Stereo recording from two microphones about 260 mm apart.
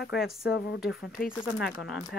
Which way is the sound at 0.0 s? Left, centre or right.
Left.